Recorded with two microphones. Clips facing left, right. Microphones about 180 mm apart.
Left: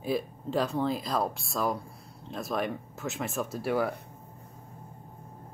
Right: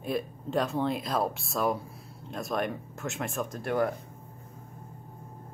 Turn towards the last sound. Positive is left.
turn(degrees=5)  # may be behind; listen again after turning